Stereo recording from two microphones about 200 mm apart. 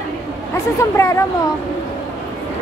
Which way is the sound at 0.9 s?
15° left (ahead or behind).